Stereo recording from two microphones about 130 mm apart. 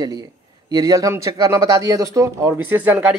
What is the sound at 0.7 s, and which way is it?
Speech, 30° right (ahead or behind).